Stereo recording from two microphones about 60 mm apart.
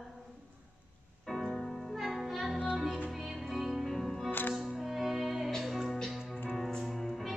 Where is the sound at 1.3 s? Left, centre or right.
Centre.